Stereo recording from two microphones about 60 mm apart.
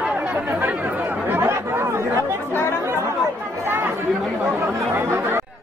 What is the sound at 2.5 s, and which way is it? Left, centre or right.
Speech, left.